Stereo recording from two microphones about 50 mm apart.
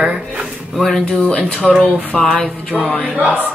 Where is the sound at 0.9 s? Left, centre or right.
Centre.